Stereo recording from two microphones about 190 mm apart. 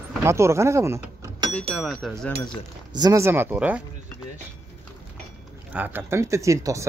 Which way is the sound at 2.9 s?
20° right (ahead or behind).